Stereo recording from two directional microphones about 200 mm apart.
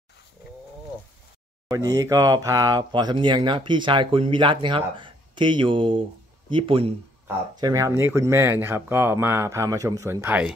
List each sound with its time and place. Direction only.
1.7 s speech: 20° right (ahead or behind)